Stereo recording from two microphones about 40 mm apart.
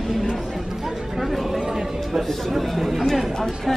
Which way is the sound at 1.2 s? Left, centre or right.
Centre.